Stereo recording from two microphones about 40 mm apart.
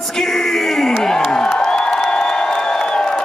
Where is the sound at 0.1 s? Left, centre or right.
Centre.